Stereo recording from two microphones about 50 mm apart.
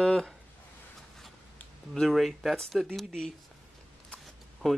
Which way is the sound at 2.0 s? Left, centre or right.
Centre.